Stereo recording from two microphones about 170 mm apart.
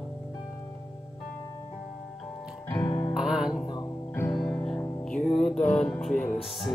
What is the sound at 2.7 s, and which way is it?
Music, 25° left (ahead or behind).